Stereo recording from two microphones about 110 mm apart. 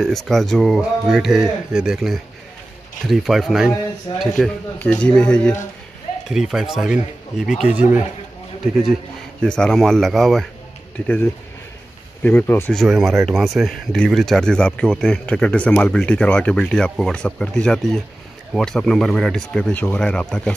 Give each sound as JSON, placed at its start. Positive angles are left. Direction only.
{"t": 0.0, "sound": "speech", "side_deg": 0}
{"t": 4.1, "sound": "speech", "side_deg": 55}
{"t": 4.7, "sound": "speech", "side_deg": 10}
{"t": 6.2, "sound": "speech", "side_deg": -5}
{"t": 7.7, "sound": "a man's voice", "side_deg": -15}
{"t": 9.4, "sound": "speech", "side_deg": 5}
{"t": 12.2, "sound": "speech", "side_deg": 15}
{"t": 12.7, "sound": "speech", "side_deg": -5}